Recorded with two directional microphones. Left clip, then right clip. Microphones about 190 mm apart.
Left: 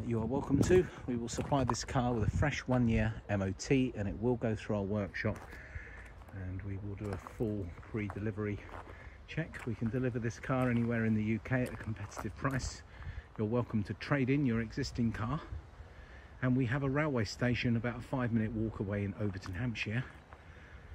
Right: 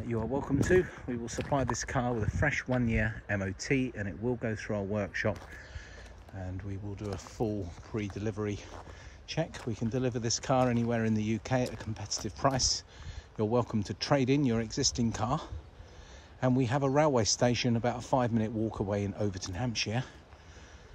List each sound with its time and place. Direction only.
0.7 s speech: centre (ahead or behind)
2.9 s speech: 10° left (ahead or behind)
3.9 s a man's voice: centre (ahead or behind)
8.2 s a man's voice: 20° right (ahead or behind)